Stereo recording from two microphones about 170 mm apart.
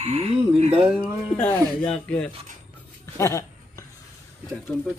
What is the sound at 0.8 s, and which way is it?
Speech, 5° right (ahead or behind).